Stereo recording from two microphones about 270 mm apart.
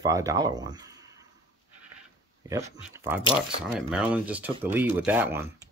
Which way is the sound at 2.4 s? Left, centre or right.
Centre.